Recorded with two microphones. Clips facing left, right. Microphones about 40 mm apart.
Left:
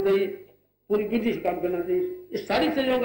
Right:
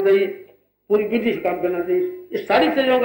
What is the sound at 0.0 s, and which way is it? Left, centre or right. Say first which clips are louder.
A man's voice: right 6 dB; right.